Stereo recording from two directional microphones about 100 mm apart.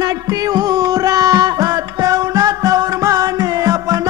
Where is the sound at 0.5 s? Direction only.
40° right (ahead or behind).